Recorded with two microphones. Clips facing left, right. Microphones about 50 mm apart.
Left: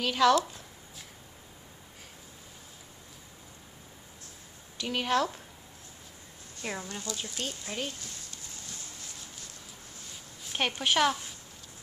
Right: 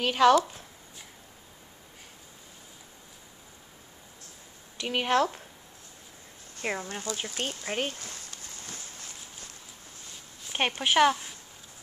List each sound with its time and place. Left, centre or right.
0.0 s speech: right
4.7 s speech: right
6.6 s speech: right
10.8 s a woman's voice: centre